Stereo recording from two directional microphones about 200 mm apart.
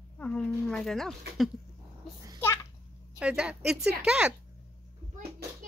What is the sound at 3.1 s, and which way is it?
Speech, 5° right (ahead or behind).